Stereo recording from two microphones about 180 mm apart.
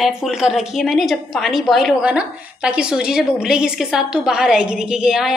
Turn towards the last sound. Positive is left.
turn(degrees=-5)  # may be behind; listen again after turning